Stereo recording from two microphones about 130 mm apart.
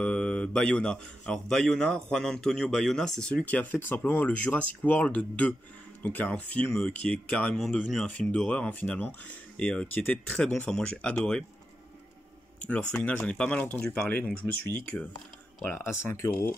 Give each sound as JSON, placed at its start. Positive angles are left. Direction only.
{"t": 0.0, "sound": "a man's voice", "side_deg": 5}
{"t": 12.5, "sound": "a man's voice", "side_deg": 10}